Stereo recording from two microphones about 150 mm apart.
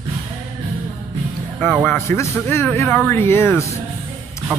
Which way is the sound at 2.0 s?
15° left (ahead or behind).